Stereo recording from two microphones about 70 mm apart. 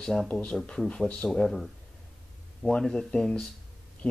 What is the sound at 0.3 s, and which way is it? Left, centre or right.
Speech, centre.